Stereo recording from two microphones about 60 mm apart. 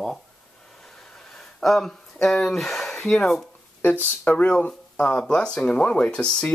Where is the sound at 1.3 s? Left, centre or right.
Centre.